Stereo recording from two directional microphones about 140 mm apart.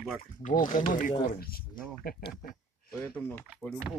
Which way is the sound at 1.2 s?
90° left.